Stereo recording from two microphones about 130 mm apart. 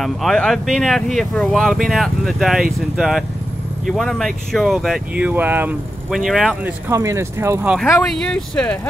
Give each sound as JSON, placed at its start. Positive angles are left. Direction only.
{"t": 0.0, "sound": "speech", "side_deg": 0}
{"t": 6.0, "sound": "speech", "side_deg": 0}
{"t": 6.6, "sound": "speech", "side_deg": -20}
{"t": 7.6, "sound": "speech", "side_deg": 0}